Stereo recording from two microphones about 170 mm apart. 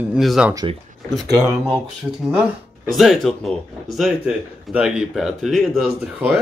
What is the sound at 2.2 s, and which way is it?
Speech, 5° right (ahead or behind).